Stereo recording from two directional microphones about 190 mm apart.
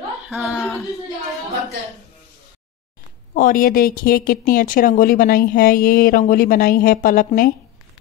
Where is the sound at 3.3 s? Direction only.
45° left (ahead or behind).